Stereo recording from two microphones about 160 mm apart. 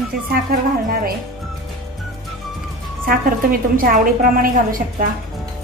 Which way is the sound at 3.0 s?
65° right (ahead or behind).